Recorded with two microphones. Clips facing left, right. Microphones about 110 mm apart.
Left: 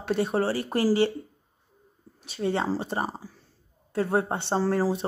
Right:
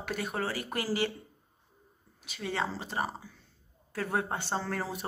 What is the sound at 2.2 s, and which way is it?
Speech, 30° left (ahead or behind).